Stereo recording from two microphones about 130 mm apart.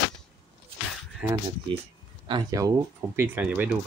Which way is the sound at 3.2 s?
15° right (ahead or behind).